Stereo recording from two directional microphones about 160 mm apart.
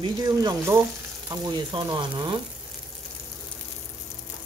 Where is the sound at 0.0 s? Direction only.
25° right (ahead or behind).